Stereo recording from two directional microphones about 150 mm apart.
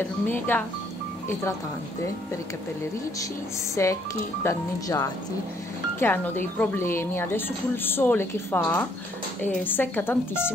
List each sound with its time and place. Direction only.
0.0 s speech: 15° left (ahead or behind)
3.7 s speech: 20° left (ahead or behind)